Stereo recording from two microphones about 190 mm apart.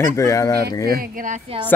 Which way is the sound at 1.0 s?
45° right (ahead or behind).